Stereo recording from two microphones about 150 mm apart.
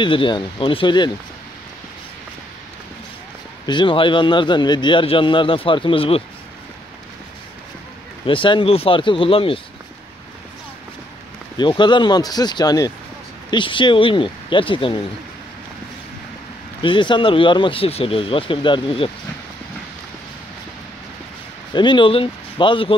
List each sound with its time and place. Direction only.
0.0 s a man's voice: 35° left (ahead or behind)
3.6 s a man's voice: 30° left (ahead or behind)
8.3 s a man's voice: 35° left (ahead or behind)
11.5 s a man's voice: 30° left (ahead or behind)
16.8 s a man's voice: 35° left (ahead or behind)
21.7 s a man's voice: 30° left (ahead or behind)